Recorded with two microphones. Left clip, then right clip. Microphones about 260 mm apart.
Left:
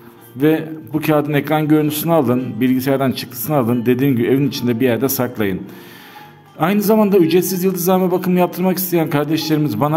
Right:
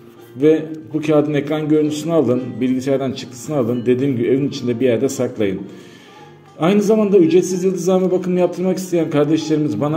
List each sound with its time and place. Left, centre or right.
0.4 s a man's voice: left
6.6 s a man's voice: left